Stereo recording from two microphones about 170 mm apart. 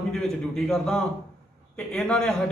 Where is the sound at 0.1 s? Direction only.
Centre (ahead or behind).